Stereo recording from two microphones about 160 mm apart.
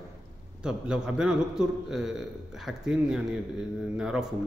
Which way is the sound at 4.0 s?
5° right (ahead or behind).